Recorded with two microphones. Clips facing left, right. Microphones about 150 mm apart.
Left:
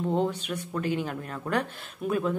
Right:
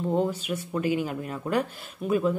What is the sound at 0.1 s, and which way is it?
Speech, 5° right (ahead or behind).